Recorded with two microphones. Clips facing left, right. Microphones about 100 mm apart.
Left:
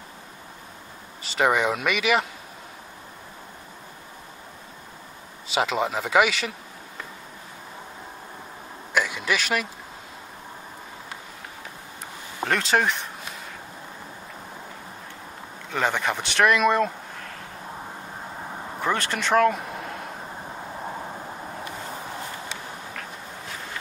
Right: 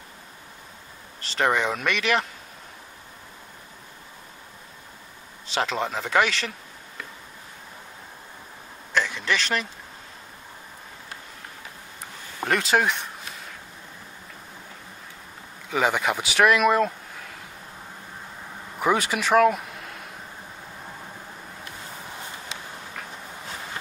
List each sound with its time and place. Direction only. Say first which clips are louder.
1.2 s speech: left 2 dB; 5° left (ahead or behind)
5.5 s speech: left 2 dB; 5° left (ahead or behind)
8.9 s a sound: even; 10° left (ahead or behind)
12.4 s speech: even; centre (ahead or behind)
15.7 s speech: right 2 dB; 5° right (ahead or behind)
18.8 s speech: right 3 dB; 10° right (ahead or behind)